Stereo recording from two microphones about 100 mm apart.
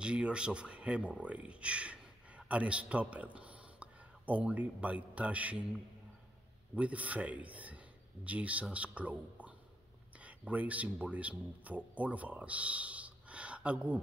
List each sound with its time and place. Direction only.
0.0 s speech: 10° right (ahead or behind)
6.7 s a man's voice: 15° right (ahead or behind)